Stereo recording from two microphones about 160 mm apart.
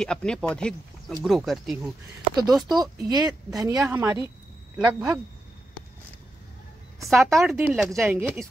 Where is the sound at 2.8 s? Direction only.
25° right (ahead or behind).